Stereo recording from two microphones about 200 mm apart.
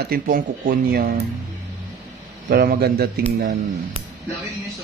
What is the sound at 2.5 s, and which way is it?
Speech, 50° right (ahead or behind).